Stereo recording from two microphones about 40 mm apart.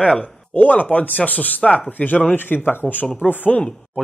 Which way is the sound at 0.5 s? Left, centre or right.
Left.